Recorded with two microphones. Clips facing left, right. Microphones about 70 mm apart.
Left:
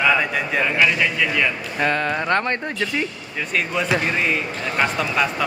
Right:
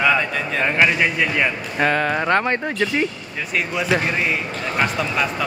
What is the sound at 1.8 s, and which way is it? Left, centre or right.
Speech, centre.